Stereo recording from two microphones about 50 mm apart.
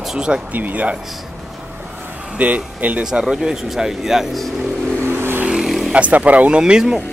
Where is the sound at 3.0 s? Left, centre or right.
Centre.